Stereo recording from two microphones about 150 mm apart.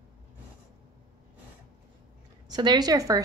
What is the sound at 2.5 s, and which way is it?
Speech, 30° right (ahead or behind).